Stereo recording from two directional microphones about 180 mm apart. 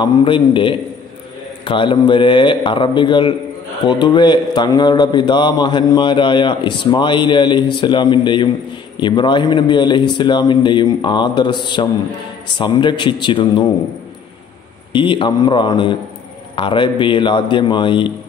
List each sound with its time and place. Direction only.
0.0 s a man's voice: 25° left (ahead or behind)
14.9 s a man's voice: 30° left (ahead or behind)